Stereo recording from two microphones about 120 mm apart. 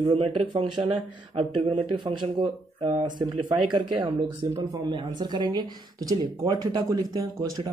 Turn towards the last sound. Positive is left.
turn(degrees=-30)  # may be behind; listen again after turning